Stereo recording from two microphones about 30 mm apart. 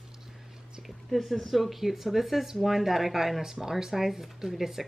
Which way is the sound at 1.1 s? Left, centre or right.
Centre.